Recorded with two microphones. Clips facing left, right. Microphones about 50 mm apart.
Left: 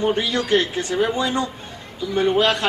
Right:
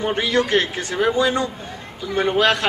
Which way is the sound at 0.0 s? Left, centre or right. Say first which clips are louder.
Right 1 dB; right.